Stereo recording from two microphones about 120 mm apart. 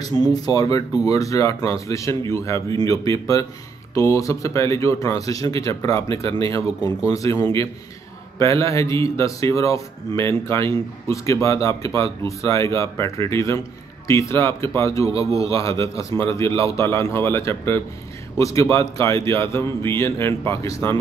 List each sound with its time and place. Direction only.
0.0 s speech: 30° left (ahead or behind)